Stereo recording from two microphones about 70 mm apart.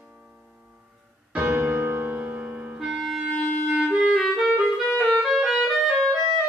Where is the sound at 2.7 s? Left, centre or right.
Centre.